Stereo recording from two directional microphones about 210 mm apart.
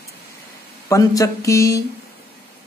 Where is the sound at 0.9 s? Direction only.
15° left (ahead or behind).